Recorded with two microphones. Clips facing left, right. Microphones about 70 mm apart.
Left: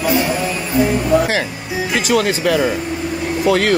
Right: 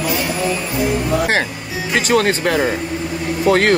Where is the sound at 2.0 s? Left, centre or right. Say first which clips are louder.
Right 2 dB; right.